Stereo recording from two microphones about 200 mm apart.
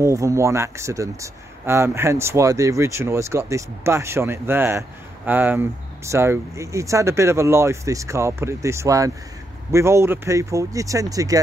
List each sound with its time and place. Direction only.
0.0 s speech: 15° right (ahead or behind)